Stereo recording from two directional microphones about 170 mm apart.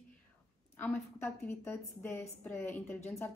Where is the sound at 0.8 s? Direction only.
10° left (ahead or behind).